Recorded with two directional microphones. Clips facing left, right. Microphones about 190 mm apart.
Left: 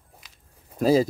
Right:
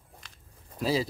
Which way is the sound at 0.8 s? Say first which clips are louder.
Left 9 dB; 45° left (ahead or behind).